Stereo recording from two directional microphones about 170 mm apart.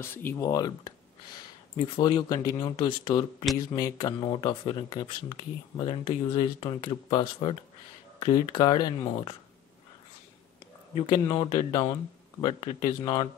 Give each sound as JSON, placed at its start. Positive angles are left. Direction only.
{"t": 0.0, "sound": "speech", "side_deg": 10}
{"t": 2.0, "sound": "speech", "side_deg": 25}
{"t": 11.1, "sound": "speech", "side_deg": 30}